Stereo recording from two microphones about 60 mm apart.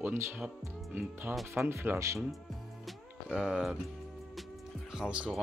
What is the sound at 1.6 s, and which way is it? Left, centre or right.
Speech, right.